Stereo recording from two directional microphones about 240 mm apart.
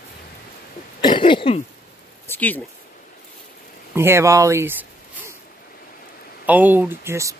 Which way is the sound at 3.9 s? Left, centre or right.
Centre.